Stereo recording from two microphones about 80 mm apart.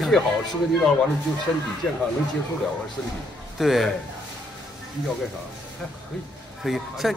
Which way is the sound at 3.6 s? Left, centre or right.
Centre.